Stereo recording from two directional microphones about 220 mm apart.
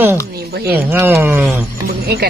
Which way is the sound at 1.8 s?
45° right (ahead or behind).